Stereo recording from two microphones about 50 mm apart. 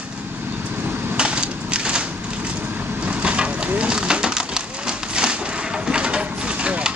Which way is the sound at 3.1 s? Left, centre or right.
Right.